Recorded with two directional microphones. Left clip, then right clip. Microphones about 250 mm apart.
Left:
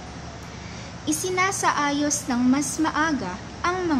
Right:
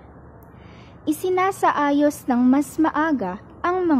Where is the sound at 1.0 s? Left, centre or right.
Right.